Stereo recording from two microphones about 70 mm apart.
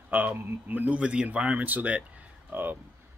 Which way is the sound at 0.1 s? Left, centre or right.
Right.